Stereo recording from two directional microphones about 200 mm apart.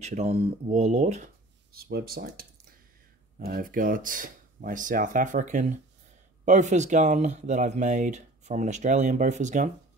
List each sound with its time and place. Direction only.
0.0 s speech: 35° right (ahead or behind)